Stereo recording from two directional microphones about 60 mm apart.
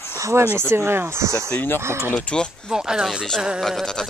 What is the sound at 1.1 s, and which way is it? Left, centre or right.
Speech, right.